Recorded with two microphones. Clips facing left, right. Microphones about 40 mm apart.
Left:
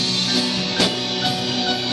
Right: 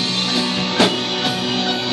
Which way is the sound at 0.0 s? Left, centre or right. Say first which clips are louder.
Right 1 dB; right.